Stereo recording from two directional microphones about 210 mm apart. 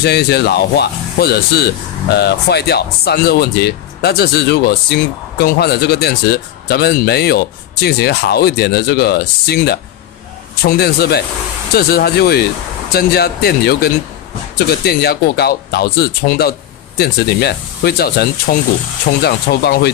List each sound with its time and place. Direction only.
0.0 s speech: 50° left (ahead or behind)
14.9 s speech: 50° left (ahead or behind)